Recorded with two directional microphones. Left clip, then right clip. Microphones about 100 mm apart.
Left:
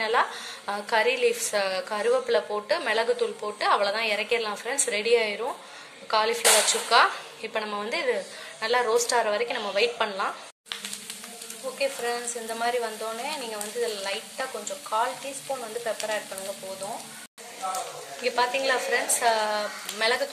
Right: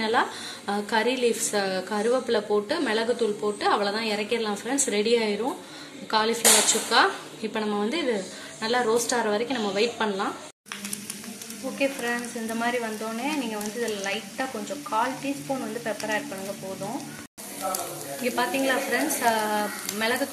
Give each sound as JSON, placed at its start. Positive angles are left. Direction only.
{"t": 0.0, "sound": "a woman's voice", "side_deg": 0}
{"t": 11.8, "sound": "speech", "side_deg": 15}
{"t": 14.9, "sound": "speech", "side_deg": 10}
{"t": 18.2, "sound": "speech", "side_deg": 20}